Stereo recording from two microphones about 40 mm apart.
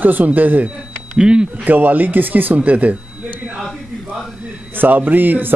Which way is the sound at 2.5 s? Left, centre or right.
Right.